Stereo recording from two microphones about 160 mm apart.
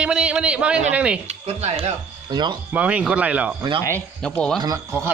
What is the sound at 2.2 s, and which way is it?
Speech, 30° right (ahead or behind).